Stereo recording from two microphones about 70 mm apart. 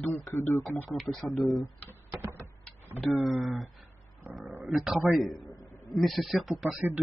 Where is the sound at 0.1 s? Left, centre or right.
Left.